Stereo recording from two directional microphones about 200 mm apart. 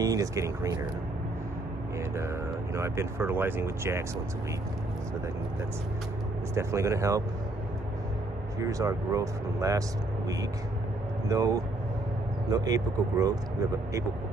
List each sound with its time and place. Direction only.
0.0 s speech: 15° right (ahead or behind)
2.0 s speech: 15° right (ahead or behind)
6.5 s speech: 15° right (ahead or behind)
8.5 s speech: 15° right (ahead or behind)